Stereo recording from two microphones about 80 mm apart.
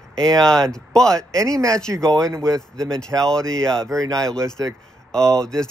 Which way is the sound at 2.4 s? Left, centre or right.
Centre.